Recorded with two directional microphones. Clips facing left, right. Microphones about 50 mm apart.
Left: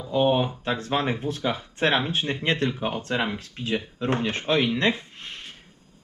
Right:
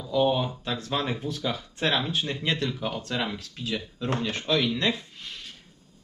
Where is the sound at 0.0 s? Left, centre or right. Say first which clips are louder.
Left 2 dB; left.